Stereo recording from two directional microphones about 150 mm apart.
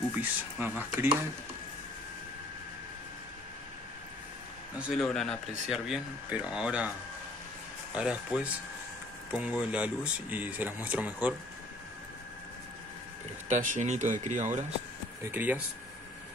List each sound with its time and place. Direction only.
0.1 s speech: 10° right (ahead or behind)
4.7 s speech: 5° right (ahead or behind)
5.0 s speech: 5° left (ahead or behind)
7.9 s speech: 5° right (ahead or behind)
13.5 s speech: 55° right (ahead or behind)
15.3 s speech: 10° right (ahead or behind)